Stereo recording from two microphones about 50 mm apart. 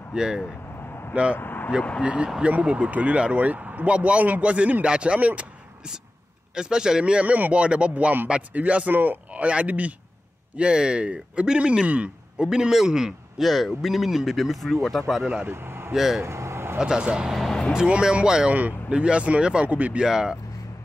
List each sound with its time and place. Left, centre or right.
0.1 s speech: centre
1.3 s speech: left
2.0 s speech: right
6.5 s speech: centre
13.4 s speech: centre
15.4 s a man's voice: right
15.9 s speech: centre
16.2 s vehicle: right
16.7 s speech: centre
17.3 s music: centre
17.7 s speech: centre
18.5 s speech: right
18.9 s speech: right
20.0 s speech: centre